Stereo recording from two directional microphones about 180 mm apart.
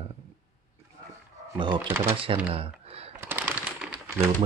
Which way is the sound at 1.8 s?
10° right (ahead or behind).